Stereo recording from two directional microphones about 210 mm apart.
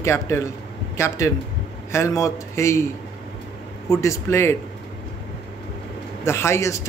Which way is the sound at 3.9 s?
15° left (ahead or behind).